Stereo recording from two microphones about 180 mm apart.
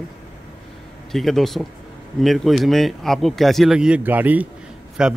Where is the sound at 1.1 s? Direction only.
Centre (ahead or behind).